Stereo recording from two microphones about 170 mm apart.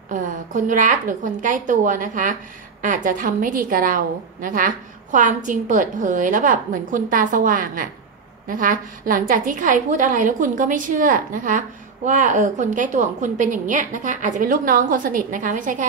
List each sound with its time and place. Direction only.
0.1 s a woman's voice: 50° right (ahead or behind)